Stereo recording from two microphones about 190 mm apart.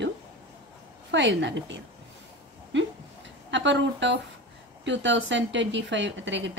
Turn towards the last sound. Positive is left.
turn(degrees=-70)  # may be behind; listen again after turning